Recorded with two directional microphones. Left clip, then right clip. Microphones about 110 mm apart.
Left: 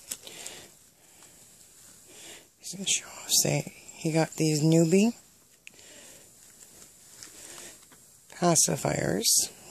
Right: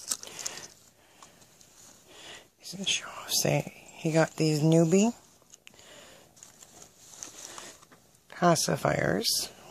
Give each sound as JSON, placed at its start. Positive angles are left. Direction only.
{"t": 0.2, "sound": "a sound", "side_deg": 20}
{"t": 2.0, "sound": "speech", "side_deg": 25}
{"t": 5.8, "sound": "sniff", "side_deg": 30}
{"t": 8.3, "sound": "speech", "side_deg": 30}